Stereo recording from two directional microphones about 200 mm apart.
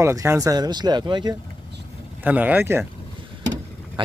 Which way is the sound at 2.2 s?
10° right (ahead or behind).